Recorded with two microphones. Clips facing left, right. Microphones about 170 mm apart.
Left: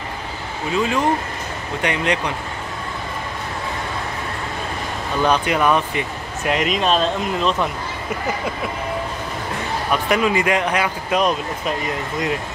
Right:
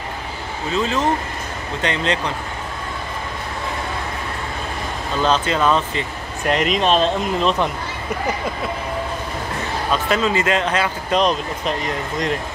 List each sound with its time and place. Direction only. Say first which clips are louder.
0.7 s speech: left 1 dB; 10° left (ahead or behind)
5.2 s speech: even; 15° left (ahead or behind)
6.5 s speech: right 2 dB; centre (ahead or behind)
9.8 s speech: left 1 dB; 15° left (ahead or behind)